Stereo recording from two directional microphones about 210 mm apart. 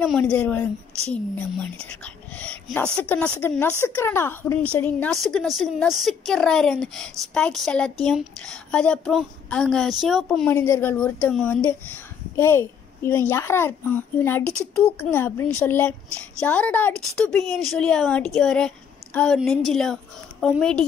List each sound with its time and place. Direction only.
0.0 s a woman's voice: 5° left (ahead or behind)